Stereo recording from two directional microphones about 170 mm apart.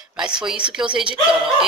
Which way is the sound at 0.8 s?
30° right (ahead or behind).